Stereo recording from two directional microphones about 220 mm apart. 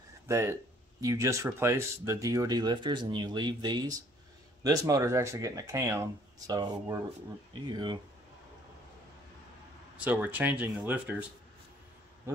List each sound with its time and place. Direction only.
0.3 s speech: 15° right (ahead or behind)
9.9 s speech: 5° right (ahead or behind)